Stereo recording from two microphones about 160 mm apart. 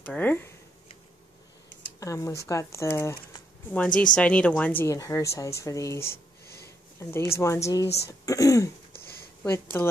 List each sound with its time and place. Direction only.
0.0 s a woman's voice: 10° left (ahead or behind)
2.0 s a woman's voice: 20° left (ahead or behind)